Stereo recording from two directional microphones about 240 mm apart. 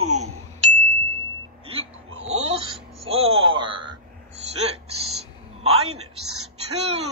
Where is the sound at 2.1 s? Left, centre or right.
Right.